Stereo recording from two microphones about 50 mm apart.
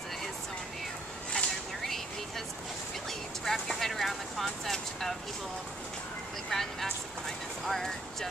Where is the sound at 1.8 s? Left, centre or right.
Centre.